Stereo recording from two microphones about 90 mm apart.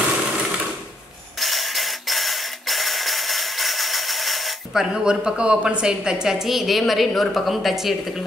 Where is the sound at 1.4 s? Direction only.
Centre (ahead or behind).